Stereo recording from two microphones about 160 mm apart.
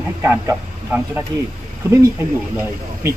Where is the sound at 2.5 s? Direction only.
15° right (ahead or behind).